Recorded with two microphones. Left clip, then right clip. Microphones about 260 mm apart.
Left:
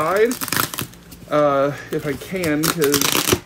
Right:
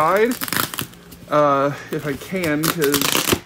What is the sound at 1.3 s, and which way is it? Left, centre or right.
Speech, right.